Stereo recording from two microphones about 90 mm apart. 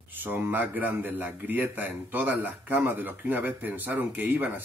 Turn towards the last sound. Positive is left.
turn(degrees=-20)  # may be behind; listen again after turning